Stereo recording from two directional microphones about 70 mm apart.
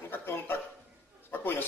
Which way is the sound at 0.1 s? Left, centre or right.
Left.